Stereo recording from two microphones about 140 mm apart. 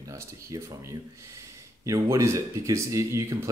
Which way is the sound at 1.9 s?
20° right (ahead or behind).